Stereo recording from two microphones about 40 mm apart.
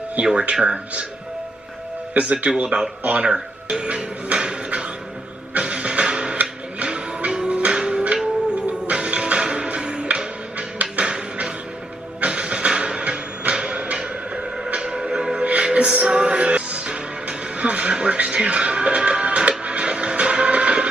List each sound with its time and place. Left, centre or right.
0.2 s speech: right
2.1 s speech: right
3.0 s speech: right
3.3 s speech: right
5.5 s vehicle: right
6.8 s a sound: right
7.4 s music: right
12.2 s a sound: right
14.9 s music: centre
15.4 s music: right